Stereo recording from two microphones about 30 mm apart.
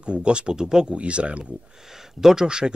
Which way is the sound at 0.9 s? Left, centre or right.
Right.